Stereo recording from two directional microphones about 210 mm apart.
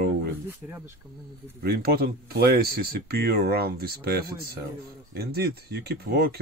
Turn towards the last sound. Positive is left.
turn(degrees=-50)  # may be behind; listen again after turning